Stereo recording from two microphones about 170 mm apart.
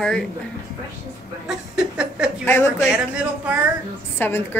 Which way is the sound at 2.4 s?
15° left (ahead or behind).